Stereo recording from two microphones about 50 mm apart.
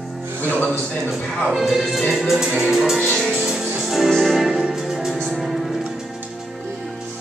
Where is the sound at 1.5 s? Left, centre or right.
Centre.